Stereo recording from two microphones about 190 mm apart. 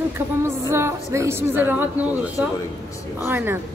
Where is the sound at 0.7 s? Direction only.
15° right (ahead or behind).